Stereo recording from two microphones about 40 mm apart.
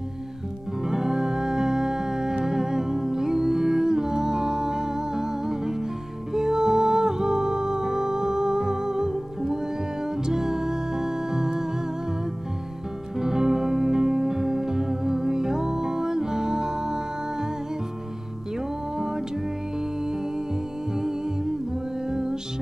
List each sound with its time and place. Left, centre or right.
0.8 s music: centre
13.2 s music: centre
18.9 s music: centre
20.9 s humming: centre
22.0 s music: centre